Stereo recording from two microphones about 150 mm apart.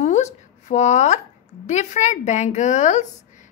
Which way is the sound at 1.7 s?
50° left (ahead or behind).